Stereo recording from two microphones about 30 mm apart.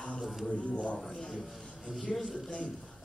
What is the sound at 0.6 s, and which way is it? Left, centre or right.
Speech, left.